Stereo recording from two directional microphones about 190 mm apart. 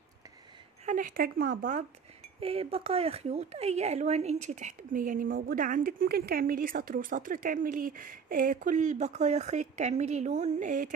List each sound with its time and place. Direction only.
0.8 s speech: 45° right (ahead or behind)
2.4 s speech: 30° right (ahead or behind)